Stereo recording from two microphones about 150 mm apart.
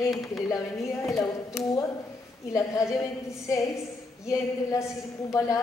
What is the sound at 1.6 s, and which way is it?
Speech, centre (ahead or behind).